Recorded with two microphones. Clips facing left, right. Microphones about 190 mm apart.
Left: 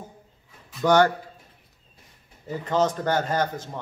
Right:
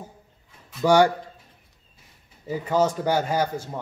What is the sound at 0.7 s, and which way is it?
Speech, 10° right (ahead or behind).